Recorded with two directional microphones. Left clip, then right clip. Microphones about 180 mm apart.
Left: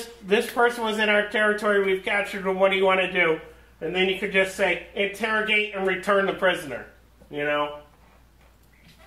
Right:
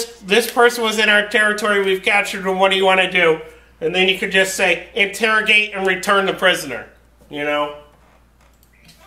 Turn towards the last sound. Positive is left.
turn(degrees=-25)  # may be behind; listen again after turning